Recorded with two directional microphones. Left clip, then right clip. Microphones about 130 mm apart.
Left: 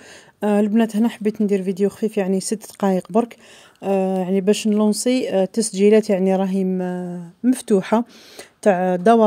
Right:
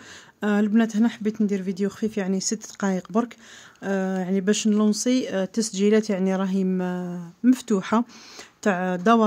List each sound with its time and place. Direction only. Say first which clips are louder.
0.4 s speech: left 5 dB; 35° left (ahead or behind)
6.7 s speech: left 3 dB; 20° left (ahead or behind)